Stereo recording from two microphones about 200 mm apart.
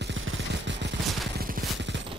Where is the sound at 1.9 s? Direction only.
65° right (ahead or behind).